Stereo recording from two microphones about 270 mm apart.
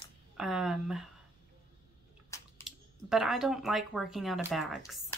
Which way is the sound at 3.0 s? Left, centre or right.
Centre.